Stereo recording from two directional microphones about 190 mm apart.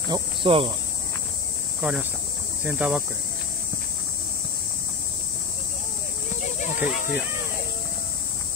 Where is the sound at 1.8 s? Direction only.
5° right (ahead or behind).